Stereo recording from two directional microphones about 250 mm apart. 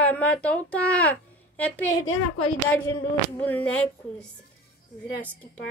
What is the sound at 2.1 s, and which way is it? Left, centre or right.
Speech, left.